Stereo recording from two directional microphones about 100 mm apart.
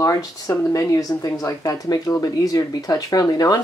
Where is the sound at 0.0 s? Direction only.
35° left (ahead or behind).